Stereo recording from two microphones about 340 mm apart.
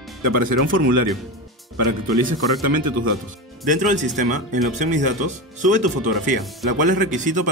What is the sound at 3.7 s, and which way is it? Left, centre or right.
Speech, right.